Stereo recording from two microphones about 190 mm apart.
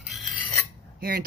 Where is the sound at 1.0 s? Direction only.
50° right (ahead or behind).